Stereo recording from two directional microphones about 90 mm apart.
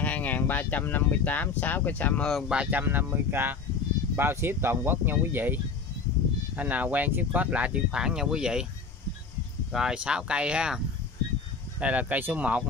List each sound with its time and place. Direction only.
0.0 s speech: 15° left (ahead or behind)
2.4 s speech: 10° right (ahead or behind)
9.7 s speech: 5° right (ahead or behind)
11.8 s speech: 15° right (ahead or behind)